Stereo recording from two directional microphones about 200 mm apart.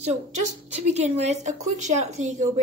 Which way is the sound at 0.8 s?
35° right (ahead or behind).